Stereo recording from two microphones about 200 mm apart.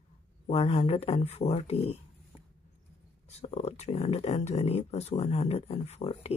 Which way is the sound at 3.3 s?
30° left (ahead or behind).